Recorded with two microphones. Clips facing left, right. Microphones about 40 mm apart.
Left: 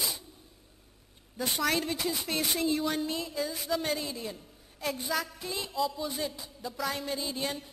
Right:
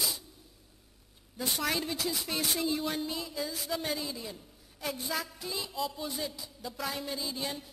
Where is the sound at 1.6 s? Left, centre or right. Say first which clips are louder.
Left 4 dB; centre.